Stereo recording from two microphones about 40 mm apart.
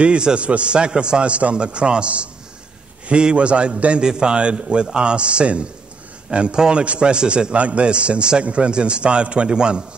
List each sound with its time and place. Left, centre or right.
0.0 s a man's voice: right